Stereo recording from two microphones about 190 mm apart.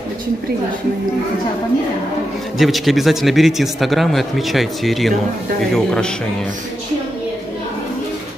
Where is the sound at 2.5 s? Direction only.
Centre (ahead or behind).